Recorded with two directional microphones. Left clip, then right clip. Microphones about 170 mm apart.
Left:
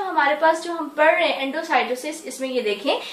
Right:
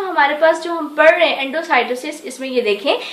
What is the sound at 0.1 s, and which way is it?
A woman's voice, 45° right (ahead or behind).